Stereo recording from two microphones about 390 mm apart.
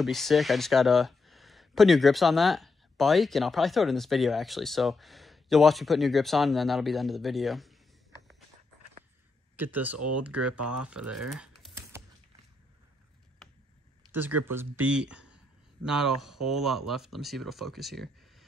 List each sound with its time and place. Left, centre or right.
0.0 s speech: centre
9.6 s speech: centre
10.4 s speech: right
10.8 s typing: centre
14.1 s speech: centre